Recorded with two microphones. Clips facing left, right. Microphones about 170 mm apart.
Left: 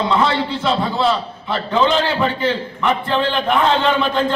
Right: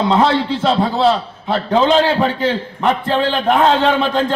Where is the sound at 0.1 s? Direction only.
40° right (ahead or behind).